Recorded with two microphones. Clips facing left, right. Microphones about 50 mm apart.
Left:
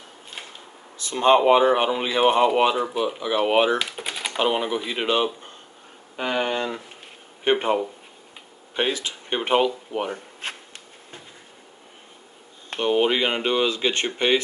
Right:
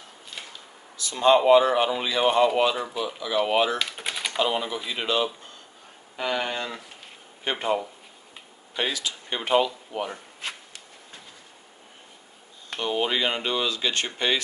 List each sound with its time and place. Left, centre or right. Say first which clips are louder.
0.5 s speech: left 2 dB; left
3.9 s typing: left 1 dB; centre
4.4 s speech: left 4 dB; left
12.6 s speech: left 6 dB; left